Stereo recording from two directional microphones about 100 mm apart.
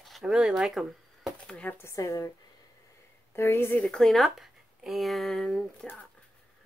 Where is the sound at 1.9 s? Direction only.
35° left (ahead or behind).